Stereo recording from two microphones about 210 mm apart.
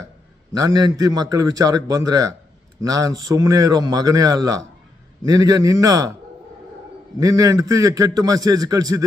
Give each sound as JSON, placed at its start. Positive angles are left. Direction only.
{"t": 0.5, "sound": "a man's voice", "side_deg": -15}
{"t": 7.2, "sound": "a man's voice", "side_deg": -15}